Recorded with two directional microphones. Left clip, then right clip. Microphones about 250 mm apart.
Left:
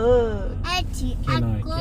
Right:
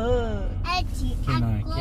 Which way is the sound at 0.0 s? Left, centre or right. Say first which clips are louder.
Left 7 dB; left.